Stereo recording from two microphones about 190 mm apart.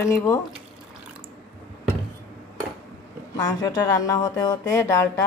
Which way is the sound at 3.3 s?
20° left (ahead or behind).